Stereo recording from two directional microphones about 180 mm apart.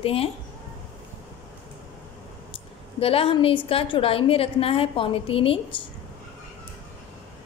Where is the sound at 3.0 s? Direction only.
30° left (ahead or behind).